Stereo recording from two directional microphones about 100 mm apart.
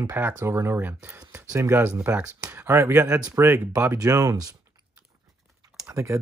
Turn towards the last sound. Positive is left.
turn(degrees=-30)  # may be behind; listen again after turning